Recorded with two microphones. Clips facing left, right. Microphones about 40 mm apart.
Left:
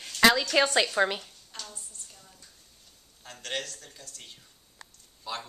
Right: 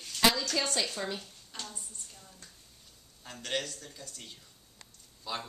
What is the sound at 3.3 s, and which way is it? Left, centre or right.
Speech, centre.